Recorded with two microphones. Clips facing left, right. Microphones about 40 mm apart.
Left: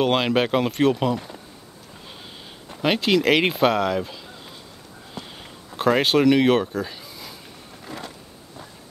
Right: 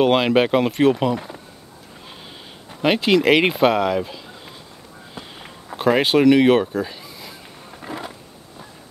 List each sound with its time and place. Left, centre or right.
0.0 s speech: centre
2.7 s speech: centre
5.2 s sniff: centre
5.8 s speech: centre
7.8 s a sound: centre